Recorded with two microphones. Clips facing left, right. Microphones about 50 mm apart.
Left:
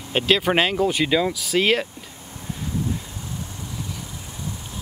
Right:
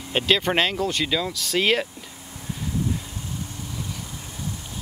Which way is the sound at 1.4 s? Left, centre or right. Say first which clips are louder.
Left 2 dB; centre.